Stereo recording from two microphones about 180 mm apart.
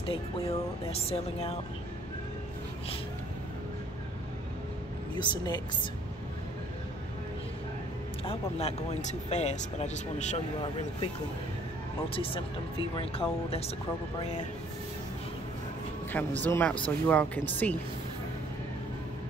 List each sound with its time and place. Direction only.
0.0 s speech: 30° left (ahead or behind)
5.1 s speech: 25° left (ahead or behind)
8.3 s speech: 35° left (ahead or behind)
12.1 s speech: 30° left (ahead or behind)
16.1 s speech: 10° left (ahead or behind)